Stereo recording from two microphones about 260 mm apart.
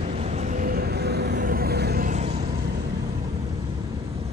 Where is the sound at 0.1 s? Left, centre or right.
Right.